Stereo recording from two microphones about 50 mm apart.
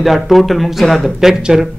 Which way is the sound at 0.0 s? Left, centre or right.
Centre.